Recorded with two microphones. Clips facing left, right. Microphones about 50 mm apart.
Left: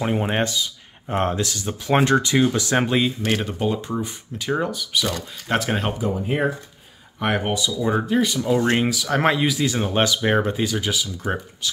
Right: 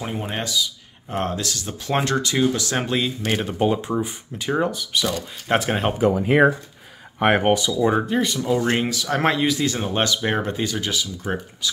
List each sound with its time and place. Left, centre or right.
0.0 s speech: left
0.4 s speech: left
1.0 s speech: left
3.3 s speech: centre
3.5 s speech: centre
5.9 s speech: right
7.2 s speech: right
8.1 s speech: centre